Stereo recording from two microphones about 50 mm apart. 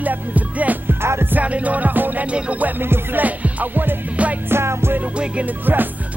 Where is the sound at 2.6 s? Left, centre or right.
Right.